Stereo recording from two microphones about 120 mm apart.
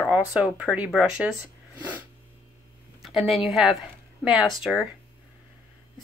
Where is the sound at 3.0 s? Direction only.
Centre (ahead or behind).